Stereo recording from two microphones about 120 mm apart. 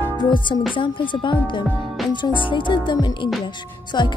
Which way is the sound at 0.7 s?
45° left (ahead or behind).